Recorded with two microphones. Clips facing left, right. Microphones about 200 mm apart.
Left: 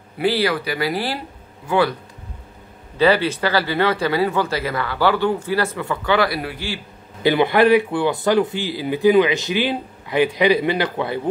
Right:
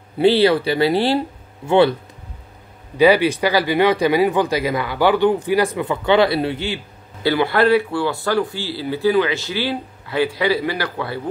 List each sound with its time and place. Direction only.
0.2 s speech: 25° right (ahead or behind)
3.0 s speech: 15° right (ahead or behind)
7.2 s a man's voice: 20° left (ahead or behind)